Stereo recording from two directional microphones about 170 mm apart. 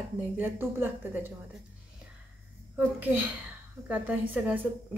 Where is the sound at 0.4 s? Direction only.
10° right (ahead or behind).